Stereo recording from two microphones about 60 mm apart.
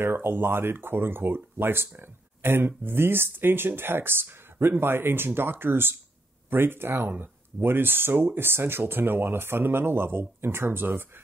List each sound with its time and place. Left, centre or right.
0.0 s speech: right